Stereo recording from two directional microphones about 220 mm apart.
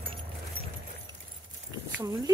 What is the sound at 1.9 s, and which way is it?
Speech, 15° right (ahead or behind).